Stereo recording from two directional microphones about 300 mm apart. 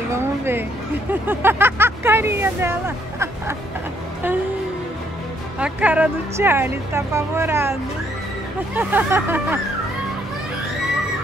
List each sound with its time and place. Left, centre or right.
0.1 s a sound: centre
1.2 s speech: centre
5.6 s speech: centre
8.7 s speech: centre